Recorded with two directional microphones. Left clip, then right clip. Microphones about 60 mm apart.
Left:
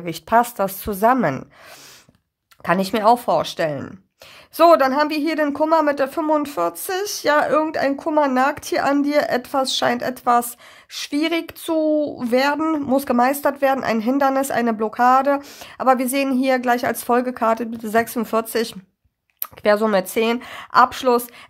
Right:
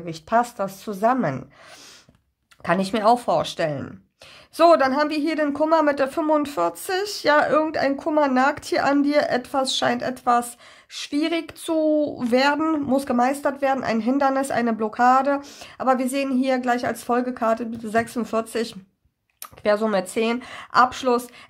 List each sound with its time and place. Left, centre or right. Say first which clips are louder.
0.0 s speech: left 4 dB; left
2.6 s speech: left 3 dB; left
5.5 s speech: left 1 dB; left
12.5 s speech: left 2 dB; left
13.1 s speech: left 5 dB; left
13.8 s speech: left 2 dB; left
15.8 s speech: left 4 dB; left
19.4 s speech: left 4 dB; left